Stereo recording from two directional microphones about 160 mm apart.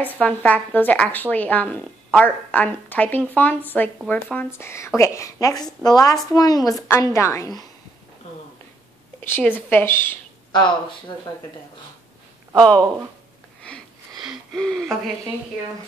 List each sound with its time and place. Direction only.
0.2 s a child's voice: 10° left (ahead or behind)
9.2 s a woman's voice: 15° left (ahead or behind)
10.5 s a child's voice: 30° left (ahead or behind)
12.5 s speech: 5° left (ahead or behind)
13.7 s wheeze: centre (ahead or behind)